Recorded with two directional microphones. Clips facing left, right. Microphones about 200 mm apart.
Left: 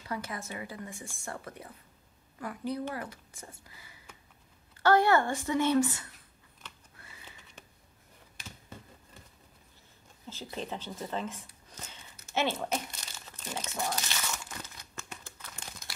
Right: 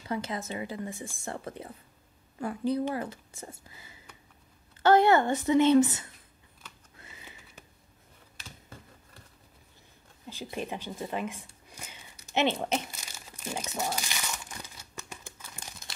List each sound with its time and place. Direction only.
0.0 s a woman's voice: 25° right (ahead or behind)
7.0 s a sound: 20° right (ahead or behind)
10.2 s speech: 15° right (ahead or behind)
11.7 s a sound: 10° right (ahead or behind)
12.3 s a woman's voice: 15° right (ahead or behind)
12.9 s crumpling: 10° right (ahead or behind)